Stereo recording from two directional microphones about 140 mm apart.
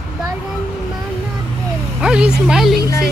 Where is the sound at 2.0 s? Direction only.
5° right (ahead or behind).